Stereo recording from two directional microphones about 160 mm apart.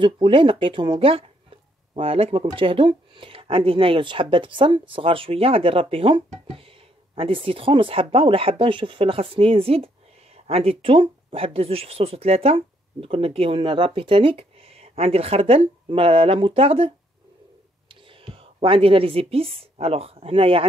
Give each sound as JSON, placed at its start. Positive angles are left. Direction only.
{"t": 0.0, "sound": "speech", "side_deg": -30}